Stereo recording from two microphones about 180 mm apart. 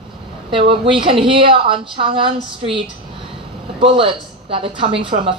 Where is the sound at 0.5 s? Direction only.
30° right (ahead or behind).